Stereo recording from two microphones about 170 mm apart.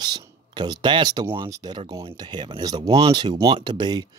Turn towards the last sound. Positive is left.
turn(degrees=-25)  # may be behind; listen again after turning